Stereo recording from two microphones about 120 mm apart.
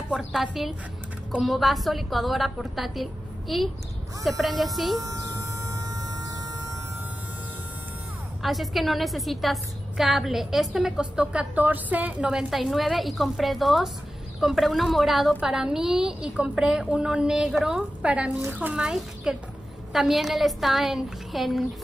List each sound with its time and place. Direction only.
0.1 s a woman's voice: centre (ahead or behind)
5.0 s music: 30° right (ahead or behind)
8.4 s a woman's voice: centre (ahead or behind)